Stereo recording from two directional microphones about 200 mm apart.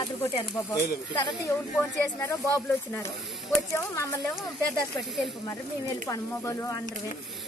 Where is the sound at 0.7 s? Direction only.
15° left (ahead or behind).